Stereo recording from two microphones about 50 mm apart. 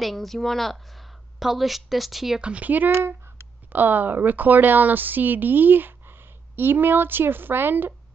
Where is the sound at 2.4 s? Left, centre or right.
Right.